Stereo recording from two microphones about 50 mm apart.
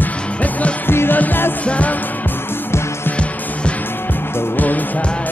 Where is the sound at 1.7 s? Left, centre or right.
Left.